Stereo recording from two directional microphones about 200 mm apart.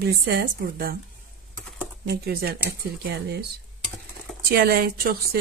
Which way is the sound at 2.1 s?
50° right (ahead or behind).